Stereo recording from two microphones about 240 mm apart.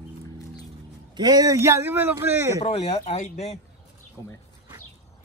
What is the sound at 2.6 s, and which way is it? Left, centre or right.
Speech, left.